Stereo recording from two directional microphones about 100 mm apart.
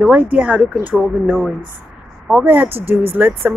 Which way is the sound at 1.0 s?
Centre (ahead or behind).